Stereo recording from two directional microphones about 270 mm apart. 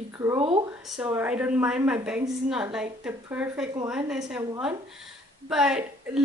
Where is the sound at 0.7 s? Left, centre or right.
Centre.